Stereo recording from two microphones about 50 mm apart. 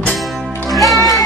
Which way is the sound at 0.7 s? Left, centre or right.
Centre.